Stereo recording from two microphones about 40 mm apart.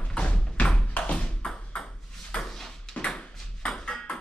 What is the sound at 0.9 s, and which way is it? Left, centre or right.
Bouncing, left.